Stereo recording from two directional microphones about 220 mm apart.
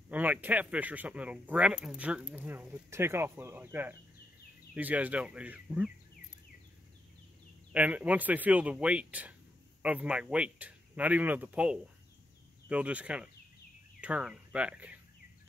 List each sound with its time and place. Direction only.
0.1 s speech: 5° right (ahead or behind)
7.7 s speech: 5° right (ahead or behind)